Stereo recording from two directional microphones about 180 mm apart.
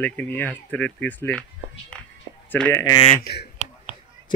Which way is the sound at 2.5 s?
15° left (ahead or behind).